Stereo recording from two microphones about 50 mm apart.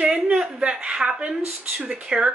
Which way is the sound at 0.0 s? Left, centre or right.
Centre.